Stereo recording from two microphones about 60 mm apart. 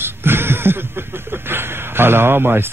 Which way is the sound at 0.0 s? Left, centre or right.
Right.